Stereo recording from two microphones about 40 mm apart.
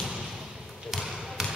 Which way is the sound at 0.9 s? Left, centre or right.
Centre.